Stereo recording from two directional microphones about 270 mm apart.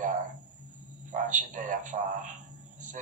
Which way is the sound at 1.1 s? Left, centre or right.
Right.